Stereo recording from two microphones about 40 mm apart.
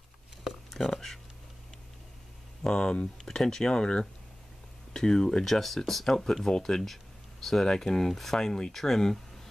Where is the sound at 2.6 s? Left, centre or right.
Centre.